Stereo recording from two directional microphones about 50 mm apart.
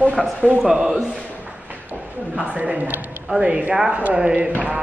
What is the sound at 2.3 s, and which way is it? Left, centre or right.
Speech, right.